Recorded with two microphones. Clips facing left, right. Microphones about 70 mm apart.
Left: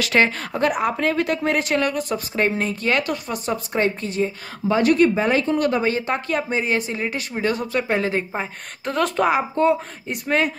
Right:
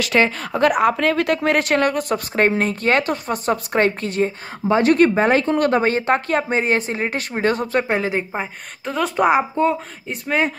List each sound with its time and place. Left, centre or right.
0.6 s a woman's voice: right
3.7 s speech: right
4.6 s speech: right
4.9 s a woman's voice: right
7.9 s a woman's voice: centre
9.1 s speech: centre
9.6 s speech: centre